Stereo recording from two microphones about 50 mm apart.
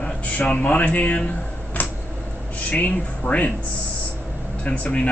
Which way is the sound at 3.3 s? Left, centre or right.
Left.